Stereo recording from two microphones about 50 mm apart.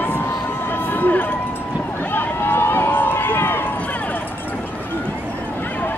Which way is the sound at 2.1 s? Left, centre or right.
Left.